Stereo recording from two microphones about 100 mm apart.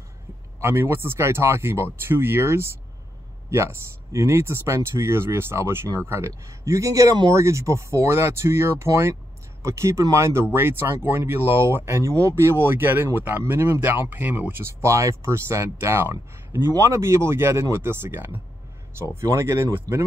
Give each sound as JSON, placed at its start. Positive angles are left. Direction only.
{"t": 0.6, "sound": "speech", "side_deg": -25}